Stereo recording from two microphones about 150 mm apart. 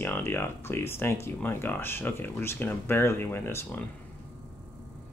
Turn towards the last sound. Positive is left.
turn(degrees=15)  # may be behind; listen again after turning